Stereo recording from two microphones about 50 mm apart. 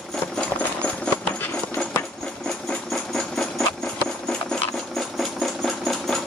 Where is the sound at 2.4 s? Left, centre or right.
Centre.